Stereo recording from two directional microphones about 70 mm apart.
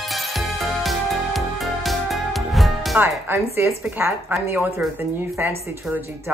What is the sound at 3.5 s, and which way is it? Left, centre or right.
Speech, right.